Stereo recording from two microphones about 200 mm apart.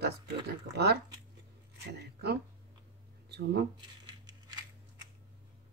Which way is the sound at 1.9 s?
55° right (ahead or behind).